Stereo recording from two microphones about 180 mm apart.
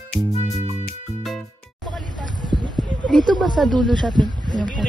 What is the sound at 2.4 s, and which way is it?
Clip-clop, 25° right (ahead or behind).